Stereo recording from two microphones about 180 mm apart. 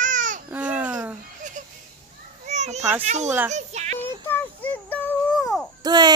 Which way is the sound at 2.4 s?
40° right (ahead or behind).